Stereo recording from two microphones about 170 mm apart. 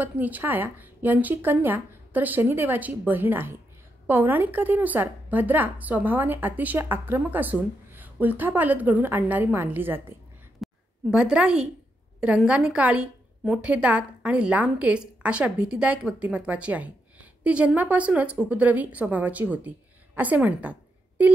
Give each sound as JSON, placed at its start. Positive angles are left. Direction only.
{"t": 0.0, "sound": "a woman's voice", "side_deg": -10}
{"t": 10.6, "sound": "a sound", "side_deg": -5}
{"t": 12.2, "sound": "a woman's voice", "side_deg": -5}